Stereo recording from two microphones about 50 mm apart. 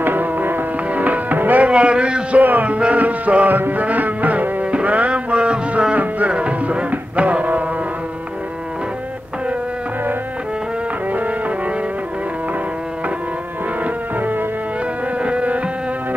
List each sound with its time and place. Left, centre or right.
0.0 s music: right
1.7 s music: right
2.4 s music: right
3.5 s music: right
11.1 s brass instrument: right
15.2 s insect: right